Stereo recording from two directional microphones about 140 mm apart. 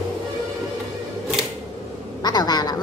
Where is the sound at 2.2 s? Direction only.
30° left (ahead or behind).